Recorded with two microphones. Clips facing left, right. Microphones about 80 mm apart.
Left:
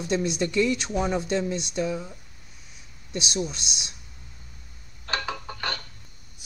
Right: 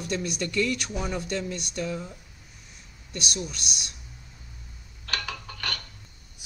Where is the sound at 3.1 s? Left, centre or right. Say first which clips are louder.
Left 4 dB; left.